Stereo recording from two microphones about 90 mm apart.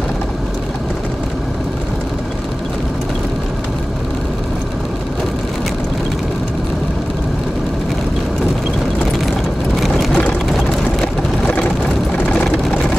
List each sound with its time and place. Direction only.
9.8 s vehicle: centre (ahead or behind); by 12.4 s 15° left (ahead or behind)